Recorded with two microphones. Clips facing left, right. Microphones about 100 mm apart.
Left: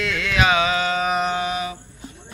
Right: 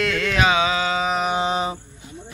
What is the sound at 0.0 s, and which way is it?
Music, 50° right (ahead or behind).